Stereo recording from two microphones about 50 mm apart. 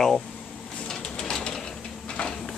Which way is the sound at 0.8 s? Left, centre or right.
Centre.